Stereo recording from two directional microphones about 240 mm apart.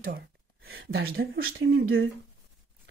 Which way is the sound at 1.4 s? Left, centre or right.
Right.